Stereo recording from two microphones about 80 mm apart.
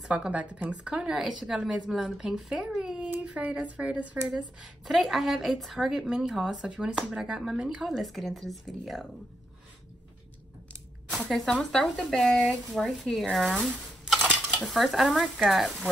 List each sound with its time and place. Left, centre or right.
0.1 s a woman's voice: centre
3.1 s a sound: centre
3.5 s a woman's voice: centre
4.8 s a woman's voice: centre
11.1 s a woman's voice: centre